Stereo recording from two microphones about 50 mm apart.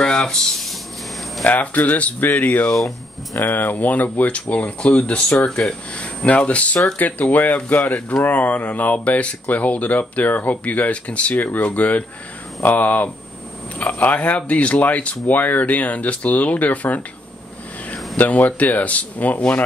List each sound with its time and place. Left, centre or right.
0.0 s a sound: centre
1.5 s speech: left
6.2 s speech: left
18.1 s speech: left